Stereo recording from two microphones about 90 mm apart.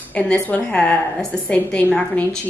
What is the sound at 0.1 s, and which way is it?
A woman's voice, 10° left (ahead or behind).